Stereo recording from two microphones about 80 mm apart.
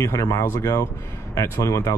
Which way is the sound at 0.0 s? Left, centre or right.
Left.